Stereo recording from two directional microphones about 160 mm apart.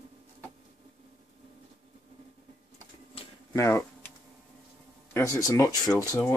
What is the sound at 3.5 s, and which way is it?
Speech, 15° left (ahead or behind).